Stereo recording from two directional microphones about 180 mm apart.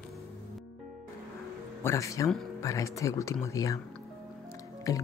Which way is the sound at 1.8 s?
15° left (ahead or behind).